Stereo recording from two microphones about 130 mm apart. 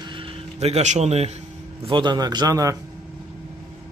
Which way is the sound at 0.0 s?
40° right (ahead or behind).